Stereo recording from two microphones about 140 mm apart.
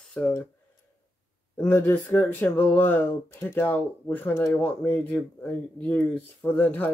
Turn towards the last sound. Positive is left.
turn(degrees=10)  # may be behind; listen again after turning